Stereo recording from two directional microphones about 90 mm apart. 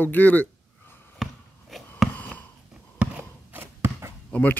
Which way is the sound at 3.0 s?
15° right (ahead or behind).